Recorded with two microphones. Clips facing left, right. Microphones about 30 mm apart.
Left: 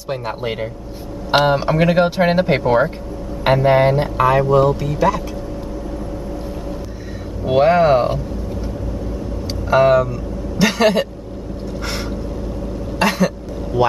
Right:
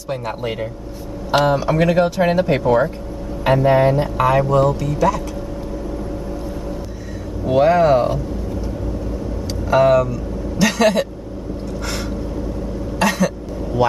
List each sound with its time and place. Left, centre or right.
0.1 s speech: centre
4.2 s speech: centre
7.4 s speech: left
9.7 s speech: centre
11.8 s a sound: centre
13.0 s cough: centre
13.8 s speech: centre